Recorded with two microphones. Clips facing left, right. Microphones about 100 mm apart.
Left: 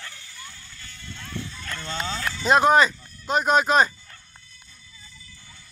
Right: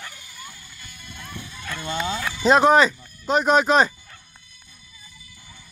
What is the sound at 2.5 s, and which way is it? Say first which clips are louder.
Speech: right 2 dB; centre (ahead or behind).